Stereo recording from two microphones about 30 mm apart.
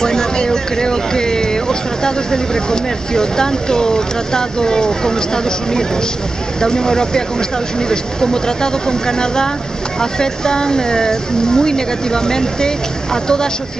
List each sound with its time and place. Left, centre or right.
0.0 s speech: centre